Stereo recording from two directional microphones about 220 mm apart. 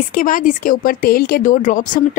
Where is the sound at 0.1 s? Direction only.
40° left (ahead or behind).